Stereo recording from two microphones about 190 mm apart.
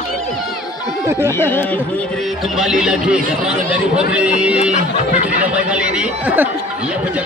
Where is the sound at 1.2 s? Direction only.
10° left (ahead or behind).